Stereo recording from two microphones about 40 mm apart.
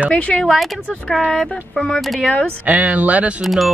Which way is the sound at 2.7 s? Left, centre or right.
Right.